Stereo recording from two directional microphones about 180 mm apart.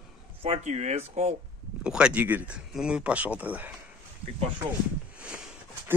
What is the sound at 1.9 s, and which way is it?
Speech, 5° right (ahead or behind).